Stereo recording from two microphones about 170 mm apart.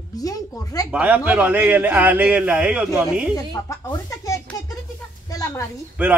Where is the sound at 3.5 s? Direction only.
20° left (ahead or behind).